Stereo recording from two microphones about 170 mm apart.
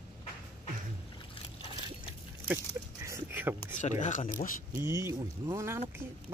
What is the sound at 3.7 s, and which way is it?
Speech, 45° left (ahead or behind).